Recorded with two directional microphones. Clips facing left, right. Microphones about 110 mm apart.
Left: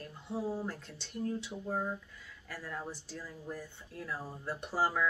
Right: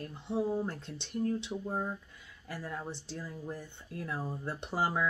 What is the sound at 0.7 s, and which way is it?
Speech, 20° right (ahead or behind).